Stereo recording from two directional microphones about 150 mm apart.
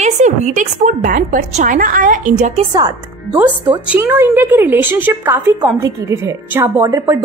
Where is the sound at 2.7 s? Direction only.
25° right (ahead or behind).